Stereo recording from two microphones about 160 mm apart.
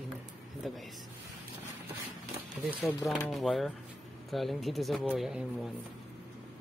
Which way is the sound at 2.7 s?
10° right (ahead or behind).